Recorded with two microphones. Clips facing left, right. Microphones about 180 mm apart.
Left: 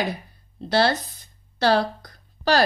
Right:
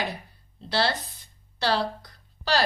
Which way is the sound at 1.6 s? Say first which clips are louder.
Left 6 dB; 45° left (ahead or behind).